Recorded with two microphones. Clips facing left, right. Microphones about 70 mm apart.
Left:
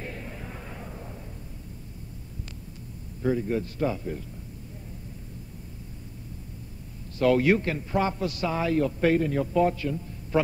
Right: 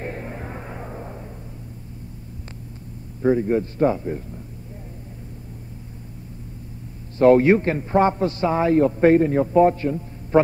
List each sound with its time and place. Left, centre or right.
0.0 s music: right
3.2 s a man's voice: right
7.2 s a man's voice: right